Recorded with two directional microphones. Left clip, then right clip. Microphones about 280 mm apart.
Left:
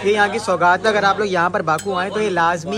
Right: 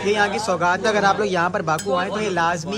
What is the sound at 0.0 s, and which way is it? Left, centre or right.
Speech, centre.